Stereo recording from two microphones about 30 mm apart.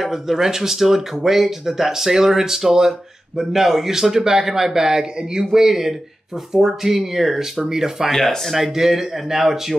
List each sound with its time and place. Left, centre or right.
0.0 s speech: centre
7.6 s speech: centre